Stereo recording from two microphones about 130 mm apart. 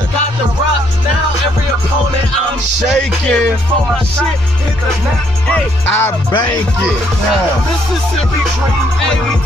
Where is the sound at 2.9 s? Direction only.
5° left (ahead or behind).